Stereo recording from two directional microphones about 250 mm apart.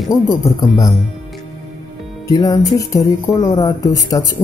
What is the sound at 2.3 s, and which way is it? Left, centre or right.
Speech, centre.